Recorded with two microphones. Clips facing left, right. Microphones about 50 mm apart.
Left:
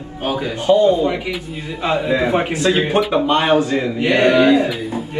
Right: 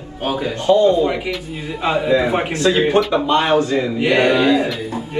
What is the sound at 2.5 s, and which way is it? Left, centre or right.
A man's voice, centre.